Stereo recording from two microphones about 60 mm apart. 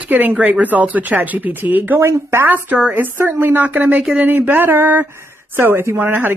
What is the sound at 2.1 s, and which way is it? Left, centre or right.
Speech, right.